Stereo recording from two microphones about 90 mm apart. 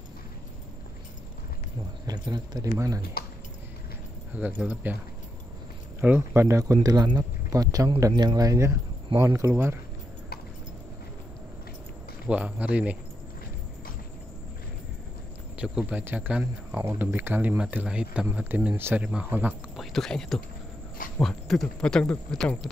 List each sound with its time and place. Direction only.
2.2 s speech: 50° right (ahead or behind)
4.4 s speech: 15° right (ahead or behind)
5.9 s speech: 25° right (ahead or behind)
6.6 s a man's voice: 40° right (ahead or behind)
12.3 s speech: 15° right (ahead or behind)
15.6 s speech: 10° right (ahead or behind)
18.2 s speech: 25° right (ahead or behind)
19.8 s speech: 5° left (ahead or behind)